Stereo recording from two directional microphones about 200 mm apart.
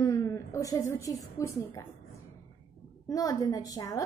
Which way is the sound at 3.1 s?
15° left (ahead or behind).